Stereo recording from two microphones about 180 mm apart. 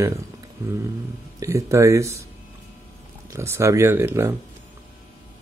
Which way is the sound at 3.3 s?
15° right (ahead or behind).